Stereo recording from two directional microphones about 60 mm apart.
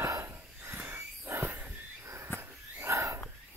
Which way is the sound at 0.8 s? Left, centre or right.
Right.